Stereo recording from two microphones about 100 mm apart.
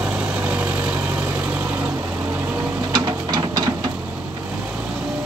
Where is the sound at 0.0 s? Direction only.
15° right (ahead or behind).